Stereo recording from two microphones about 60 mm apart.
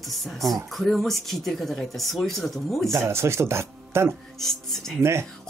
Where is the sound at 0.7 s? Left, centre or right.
Centre.